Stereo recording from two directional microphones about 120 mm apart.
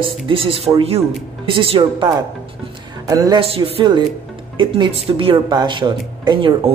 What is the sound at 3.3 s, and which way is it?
Speech, 55° right (ahead or behind).